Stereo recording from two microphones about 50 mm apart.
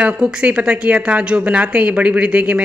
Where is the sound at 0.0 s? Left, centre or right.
Right.